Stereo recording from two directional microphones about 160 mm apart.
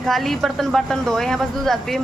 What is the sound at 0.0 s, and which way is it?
Speech, centre (ahead or behind).